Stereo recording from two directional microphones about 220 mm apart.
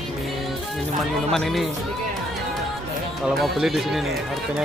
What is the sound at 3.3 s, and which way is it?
Speech, centre (ahead or behind).